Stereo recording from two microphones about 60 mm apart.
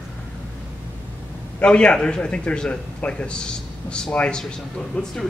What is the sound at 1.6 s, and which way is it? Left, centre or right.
A man's voice, centre.